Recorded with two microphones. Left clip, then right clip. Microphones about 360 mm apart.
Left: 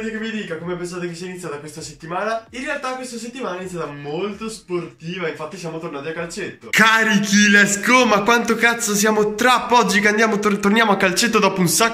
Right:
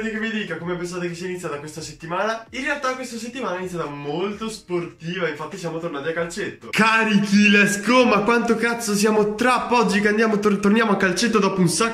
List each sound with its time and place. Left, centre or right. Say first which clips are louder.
6.7 s a man's voice: left 4 dB; centre